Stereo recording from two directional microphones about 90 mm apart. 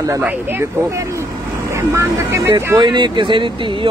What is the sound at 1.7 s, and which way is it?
Speech, 30° right (ahead or behind).